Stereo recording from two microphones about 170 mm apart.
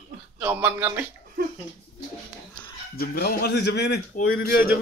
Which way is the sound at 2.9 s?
65° left (ahead or behind).